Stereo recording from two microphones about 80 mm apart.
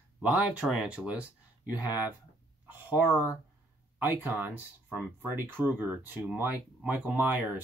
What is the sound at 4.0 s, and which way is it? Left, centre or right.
Speech, right.